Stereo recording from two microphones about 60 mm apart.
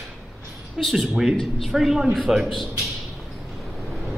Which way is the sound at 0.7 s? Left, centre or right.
Centre.